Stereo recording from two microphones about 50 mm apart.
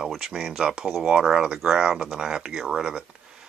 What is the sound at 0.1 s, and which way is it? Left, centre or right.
Speech, centre.